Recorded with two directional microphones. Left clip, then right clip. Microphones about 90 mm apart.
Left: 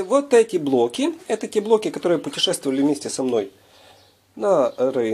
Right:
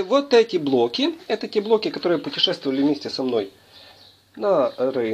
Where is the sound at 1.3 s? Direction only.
45° left (ahead or behind).